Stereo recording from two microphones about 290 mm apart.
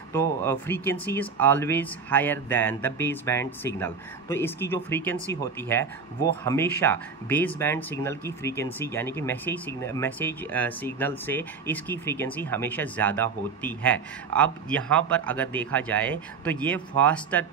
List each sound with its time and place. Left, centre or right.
0.1 s speech: centre